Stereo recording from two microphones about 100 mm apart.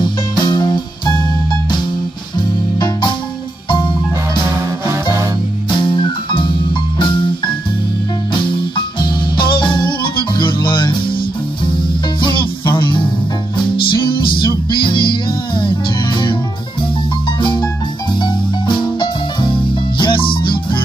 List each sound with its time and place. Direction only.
0.0 s music: 50° left (ahead or behind)
2.8 s music: 50° left (ahead or behind)
4.5 s music: 30° right (ahead or behind)
5.7 s music: 55° left (ahead or behind)
8.3 s music: 55° left (ahead or behind)
12.2 s music: 50° left (ahead or behind)
14.0 s music: 55° left (ahead or behind)
17.4 s music: 50° left (ahead or behind)